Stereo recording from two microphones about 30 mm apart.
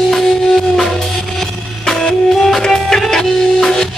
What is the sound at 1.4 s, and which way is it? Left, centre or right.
Music, centre.